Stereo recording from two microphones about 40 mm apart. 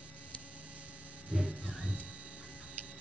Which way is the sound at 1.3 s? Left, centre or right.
Right.